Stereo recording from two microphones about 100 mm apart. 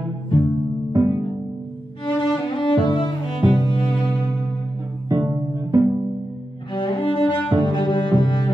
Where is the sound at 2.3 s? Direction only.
50° left (ahead or behind).